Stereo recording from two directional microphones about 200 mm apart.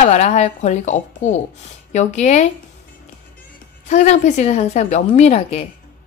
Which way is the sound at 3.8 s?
35° left (ahead or behind).